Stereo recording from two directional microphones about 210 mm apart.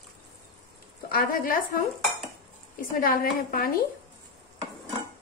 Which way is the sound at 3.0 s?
45° left (ahead or behind).